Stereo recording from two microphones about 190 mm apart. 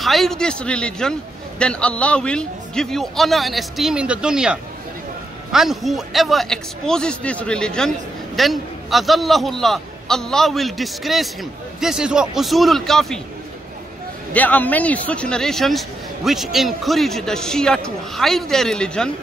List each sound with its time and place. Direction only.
0.0 s a man's voice: centre (ahead or behind)
14.3 s a man's voice: 10° left (ahead or behind)